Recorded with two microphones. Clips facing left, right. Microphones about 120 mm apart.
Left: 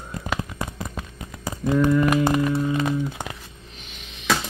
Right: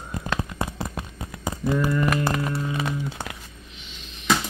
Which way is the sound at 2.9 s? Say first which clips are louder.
Left 4 dB; 15° left (ahead or behind).